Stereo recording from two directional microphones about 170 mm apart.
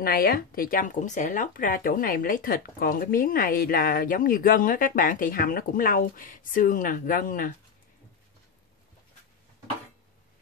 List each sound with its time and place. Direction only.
0.0 s speech: 65° left (ahead or behind)